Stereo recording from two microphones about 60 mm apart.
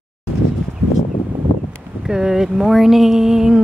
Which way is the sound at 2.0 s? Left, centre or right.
Centre.